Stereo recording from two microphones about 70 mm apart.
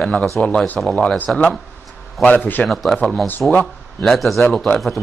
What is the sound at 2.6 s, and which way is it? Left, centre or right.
Speech, centre.